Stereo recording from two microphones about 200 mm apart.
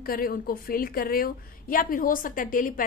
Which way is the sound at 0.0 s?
45° left (ahead or behind).